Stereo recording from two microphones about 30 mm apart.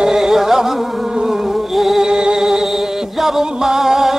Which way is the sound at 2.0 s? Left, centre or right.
Right.